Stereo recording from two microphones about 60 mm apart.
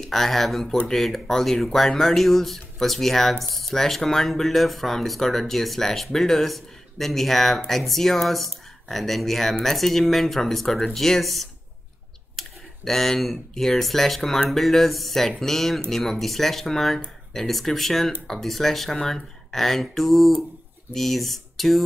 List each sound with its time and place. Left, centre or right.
0.0 s speech: centre